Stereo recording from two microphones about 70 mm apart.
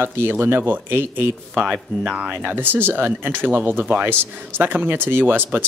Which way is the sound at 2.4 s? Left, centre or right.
Right.